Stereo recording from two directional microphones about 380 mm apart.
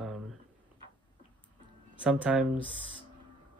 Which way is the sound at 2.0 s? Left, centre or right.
Centre.